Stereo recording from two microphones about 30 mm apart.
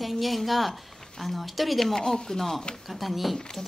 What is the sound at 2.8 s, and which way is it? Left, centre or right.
Speech, centre.